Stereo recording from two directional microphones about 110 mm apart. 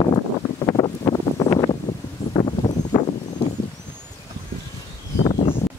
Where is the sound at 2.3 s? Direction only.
40° left (ahead or behind).